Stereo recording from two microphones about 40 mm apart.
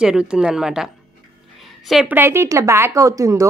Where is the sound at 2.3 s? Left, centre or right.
Right.